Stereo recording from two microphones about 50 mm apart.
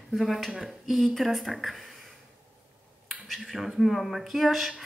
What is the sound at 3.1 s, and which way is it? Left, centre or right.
Speech, centre.